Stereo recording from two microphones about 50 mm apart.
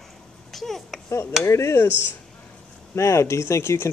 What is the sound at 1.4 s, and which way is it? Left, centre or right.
Speech, left.